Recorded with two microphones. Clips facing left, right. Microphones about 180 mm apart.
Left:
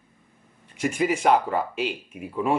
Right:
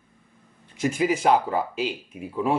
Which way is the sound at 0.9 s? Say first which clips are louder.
Even; 5° right (ahead or behind).